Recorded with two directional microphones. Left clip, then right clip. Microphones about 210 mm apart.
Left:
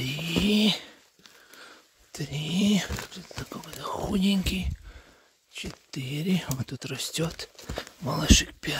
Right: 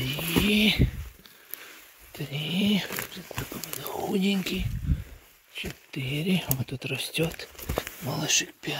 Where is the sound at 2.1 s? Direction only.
30° left (ahead or behind).